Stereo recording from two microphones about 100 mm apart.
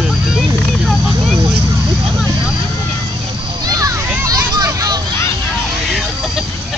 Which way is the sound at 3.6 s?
35° right (ahead or behind).